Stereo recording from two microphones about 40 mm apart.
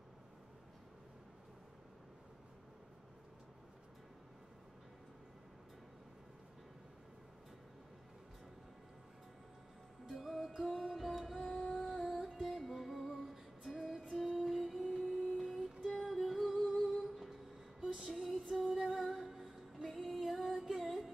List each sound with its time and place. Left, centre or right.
10.1 s music: centre